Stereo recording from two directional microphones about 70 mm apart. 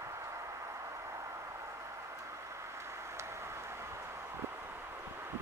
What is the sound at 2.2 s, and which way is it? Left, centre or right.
Vehicle, right.